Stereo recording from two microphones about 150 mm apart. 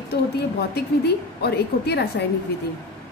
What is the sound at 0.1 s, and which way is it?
A woman's voice, 90° left.